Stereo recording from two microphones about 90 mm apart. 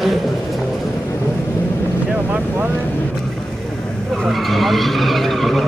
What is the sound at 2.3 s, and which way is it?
Vehicle, 20° right (ahead or behind).